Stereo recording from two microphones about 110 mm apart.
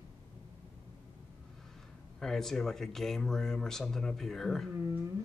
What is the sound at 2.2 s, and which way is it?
Speech, 5° left (ahead or behind).